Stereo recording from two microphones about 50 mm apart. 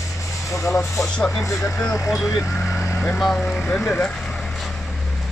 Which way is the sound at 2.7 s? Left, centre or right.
Left.